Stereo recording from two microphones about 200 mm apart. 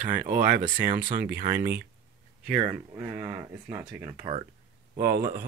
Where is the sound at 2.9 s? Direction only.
10° right (ahead or behind).